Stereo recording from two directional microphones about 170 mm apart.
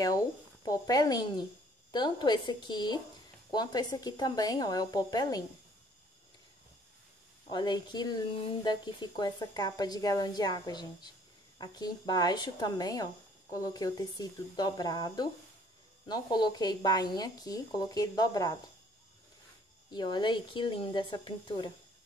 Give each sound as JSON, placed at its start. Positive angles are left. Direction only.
{"t": 0.7, "sound": "speech", "side_deg": 20}
{"t": 7.4, "sound": "speech", "side_deg": 25}
{"t": 19.9, "sound": "speech", "side_deg": 25}